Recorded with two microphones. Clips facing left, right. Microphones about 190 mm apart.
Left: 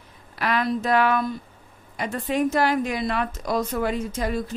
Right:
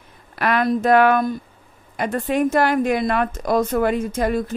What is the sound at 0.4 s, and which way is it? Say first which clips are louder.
A woman's voice: right 5 dB; 55° right (ahead or behind).